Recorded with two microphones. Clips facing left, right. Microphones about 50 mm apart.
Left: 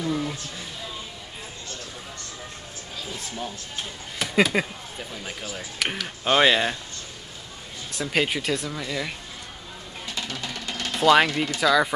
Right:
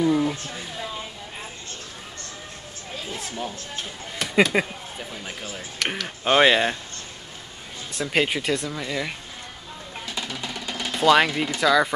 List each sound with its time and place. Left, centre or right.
0.0 s a sound: centre
4.2 s speech: centre
8.0 s speech: centre
10.1 s music: centre